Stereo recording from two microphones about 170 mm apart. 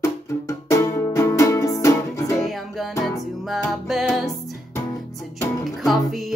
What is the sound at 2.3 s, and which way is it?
Music, centre (ahead or behind).